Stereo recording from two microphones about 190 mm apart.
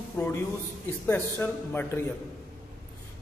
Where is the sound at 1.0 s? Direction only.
10° left (ahead or behind).